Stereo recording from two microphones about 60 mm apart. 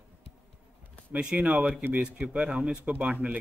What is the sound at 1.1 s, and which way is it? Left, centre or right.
Speech, centre.